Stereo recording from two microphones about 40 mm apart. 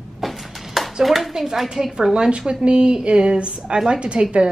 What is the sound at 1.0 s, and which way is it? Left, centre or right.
A woman's voice, centre.